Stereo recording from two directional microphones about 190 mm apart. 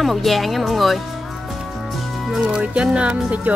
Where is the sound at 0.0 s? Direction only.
Centre (ahead or behind).